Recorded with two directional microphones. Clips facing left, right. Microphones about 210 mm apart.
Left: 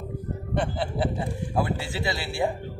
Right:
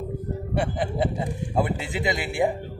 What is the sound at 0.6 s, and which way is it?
Speech, 15° right (ahead or behind).